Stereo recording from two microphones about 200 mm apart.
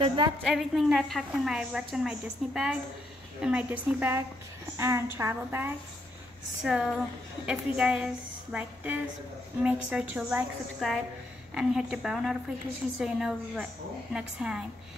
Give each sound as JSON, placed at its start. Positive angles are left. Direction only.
{"t": 0.0, "sound": "a woman's voice", "side_deg": -25}
{"t": 0.5, "sound": "a woman's voice", "side_deg": 0}